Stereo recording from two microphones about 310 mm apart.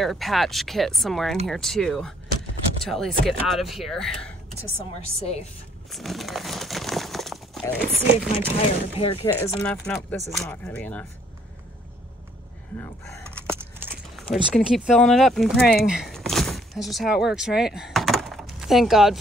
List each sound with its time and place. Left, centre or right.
0.0 s speech: centre
5.9 s a sound: centre
8.5 s speech: centre
13.7 s speech: centre